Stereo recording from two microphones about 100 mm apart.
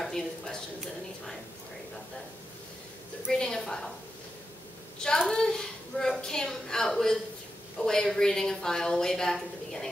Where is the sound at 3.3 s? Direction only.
5° left (ahead or behind).